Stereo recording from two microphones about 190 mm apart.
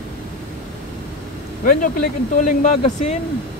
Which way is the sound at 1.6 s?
45° left (ahead or behind).